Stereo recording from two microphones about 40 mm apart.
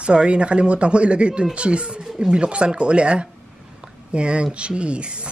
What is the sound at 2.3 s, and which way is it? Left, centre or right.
Speech, right.